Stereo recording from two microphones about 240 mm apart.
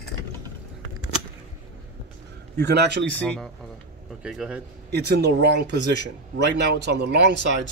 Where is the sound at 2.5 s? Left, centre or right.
Right.